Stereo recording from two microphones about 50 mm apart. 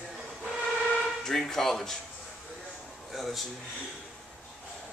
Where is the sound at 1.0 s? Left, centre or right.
Centre.